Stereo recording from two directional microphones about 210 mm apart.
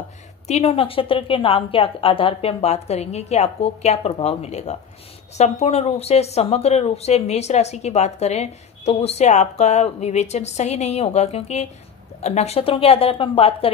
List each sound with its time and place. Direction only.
0.5 s a woman's voice: 30° left (ahead or behind)